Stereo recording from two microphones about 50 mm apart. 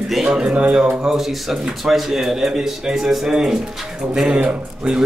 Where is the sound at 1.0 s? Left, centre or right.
Centre.